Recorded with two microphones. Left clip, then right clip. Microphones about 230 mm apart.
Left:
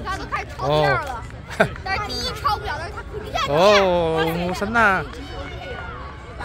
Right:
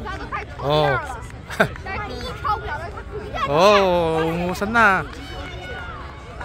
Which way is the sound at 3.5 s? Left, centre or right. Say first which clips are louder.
Even; centre.